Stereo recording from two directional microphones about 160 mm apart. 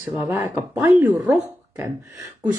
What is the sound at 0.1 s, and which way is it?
Speech, 10° right (ahead or behind).